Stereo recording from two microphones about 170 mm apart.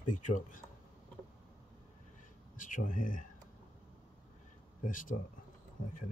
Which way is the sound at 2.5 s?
50° left (ahead or behind).